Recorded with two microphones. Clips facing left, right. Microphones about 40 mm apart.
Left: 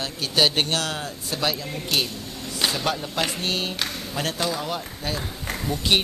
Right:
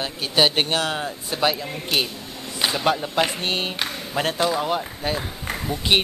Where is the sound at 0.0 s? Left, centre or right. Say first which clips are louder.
Right 2 dB; centre.